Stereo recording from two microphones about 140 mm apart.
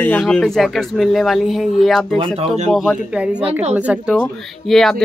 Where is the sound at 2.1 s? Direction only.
40° right (ahead or behind).